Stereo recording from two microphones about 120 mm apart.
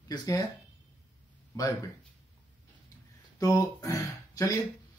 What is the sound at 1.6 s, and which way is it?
Speech, 30° left (ahead or behind).